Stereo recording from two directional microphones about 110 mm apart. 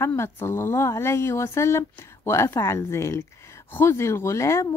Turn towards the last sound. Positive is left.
turn(degrees=25)  # may be behind; listen again after turning